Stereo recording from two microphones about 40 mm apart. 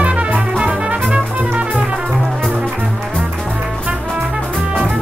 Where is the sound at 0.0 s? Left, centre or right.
Right.